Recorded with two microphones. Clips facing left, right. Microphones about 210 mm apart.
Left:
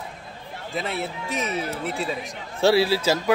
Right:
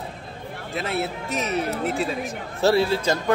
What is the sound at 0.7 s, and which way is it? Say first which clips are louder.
Speech: right 2 dB; centre (ahead or behind).